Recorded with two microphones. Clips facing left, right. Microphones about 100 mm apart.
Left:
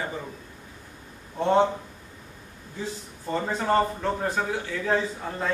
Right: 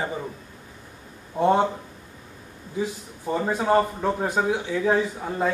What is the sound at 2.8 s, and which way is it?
Speech, 10° right (ahead or behind).